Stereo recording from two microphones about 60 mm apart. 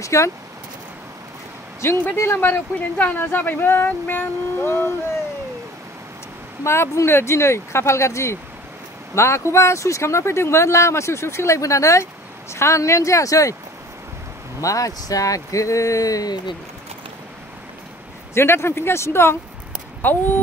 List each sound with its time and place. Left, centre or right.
0.0 s speech: left
1.8 s speech: left
2.4 s speech: left
6.6 s speech: left
14.6 s speech: left
18.3 s speech: left
20.0 s speech: left